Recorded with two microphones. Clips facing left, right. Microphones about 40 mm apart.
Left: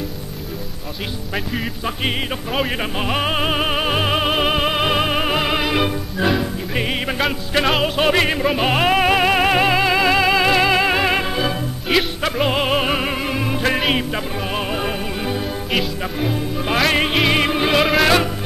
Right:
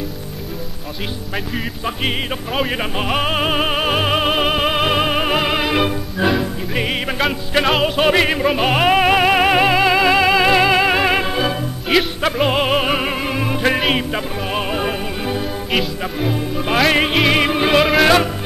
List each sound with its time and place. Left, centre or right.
1.3 s music: centre